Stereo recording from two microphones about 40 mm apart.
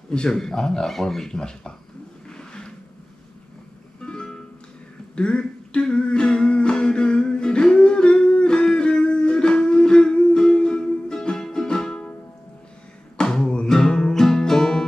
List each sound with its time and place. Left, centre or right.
0.3 s speech: centre
2.2 s a sound: left
4.0 s music: left
5.1 s humming: left
13.2 s music: centre